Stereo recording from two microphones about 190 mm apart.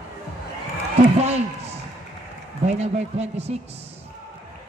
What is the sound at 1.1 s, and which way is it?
Speech, 35° right (ahead or behind).